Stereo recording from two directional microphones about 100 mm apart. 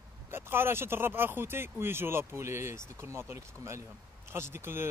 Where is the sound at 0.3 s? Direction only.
25° right (ahead or behind).